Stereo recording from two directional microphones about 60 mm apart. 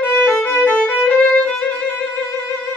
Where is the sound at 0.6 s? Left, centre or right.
Left.